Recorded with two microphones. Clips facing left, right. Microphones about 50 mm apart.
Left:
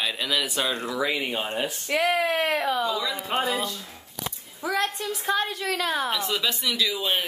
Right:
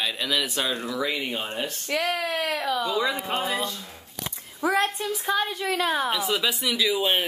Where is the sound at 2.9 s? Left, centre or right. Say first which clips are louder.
Right 3 dB; right.